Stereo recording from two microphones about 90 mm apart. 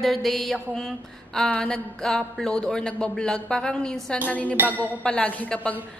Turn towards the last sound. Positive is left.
turn(degrees=15)  # may be behind; listen again after turning